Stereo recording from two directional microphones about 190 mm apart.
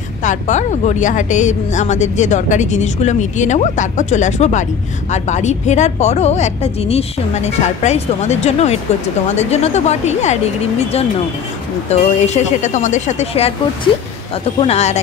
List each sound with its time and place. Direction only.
0.2 s speech: 40° left (ahead or behind)
11.9 s speech: 35° left (ahead or behind)